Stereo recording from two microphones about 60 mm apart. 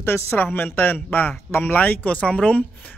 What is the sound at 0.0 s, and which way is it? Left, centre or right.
A woman's voice, left.